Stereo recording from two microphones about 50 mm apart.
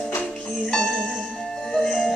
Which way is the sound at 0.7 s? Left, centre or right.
Centre.